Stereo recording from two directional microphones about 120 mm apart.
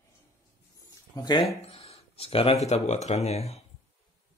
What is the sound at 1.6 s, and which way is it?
Speech, 55° left (ahead or behind).